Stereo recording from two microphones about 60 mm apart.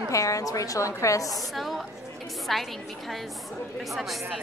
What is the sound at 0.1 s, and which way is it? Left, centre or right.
A woman's voice, left.